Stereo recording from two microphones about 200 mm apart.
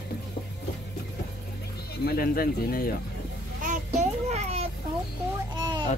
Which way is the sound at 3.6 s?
35° right (ahead or behind).